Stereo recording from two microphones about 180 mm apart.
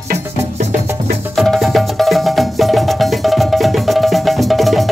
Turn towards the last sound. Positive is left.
turn(degrees=0)  # may be behind; listen again after turning